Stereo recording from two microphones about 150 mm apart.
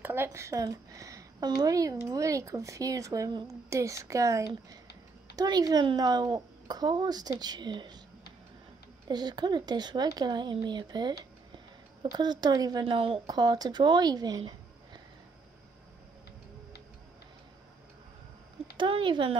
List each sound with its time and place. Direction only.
0.0 s a woman's voice: 15° right (ahead or behind)
9.0 s a woman's voice: 30° right (ahead or behind)
11.5 s a sound: 30° right (ahead or behind)
12.8 s a woman's voice: 35° right (ahead or behind)
18.8 s speech: 35° right (ahead or behind)